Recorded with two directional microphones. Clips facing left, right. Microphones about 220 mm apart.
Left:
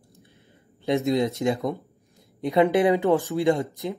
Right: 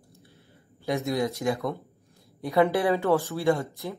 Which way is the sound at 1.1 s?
25° left (ahead or behind).